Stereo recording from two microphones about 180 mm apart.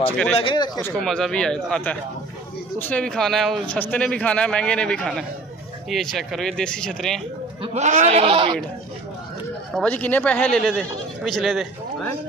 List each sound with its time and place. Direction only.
0.4 s speech: 30° left (ahead or behind)
0.8 s speech: 5° left (ahead or behind)
7.6 s a man's voice: 40° right (ahead or behind)
9.8 s speech: 10° left (ahead or behind)